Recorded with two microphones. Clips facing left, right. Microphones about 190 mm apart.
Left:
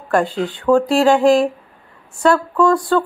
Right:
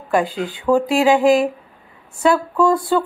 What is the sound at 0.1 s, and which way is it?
Speech, 5° right (ahead or behind).